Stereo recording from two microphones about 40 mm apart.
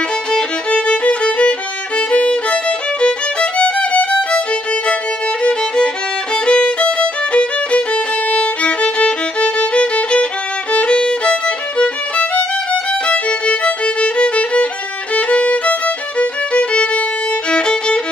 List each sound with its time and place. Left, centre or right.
0.3 s violin: left
2.0 s music: left
5.4 s music: left
6.3 s violin: left
10.7 s music: left
12.7 s violin: left
16.2 s music: left